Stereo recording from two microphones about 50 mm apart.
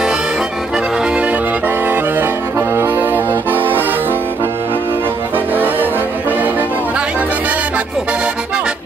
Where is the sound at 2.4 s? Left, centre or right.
Right.